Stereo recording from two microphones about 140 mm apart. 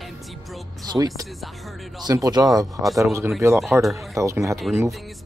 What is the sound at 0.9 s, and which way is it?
Speech, 25° right (ahead or behind).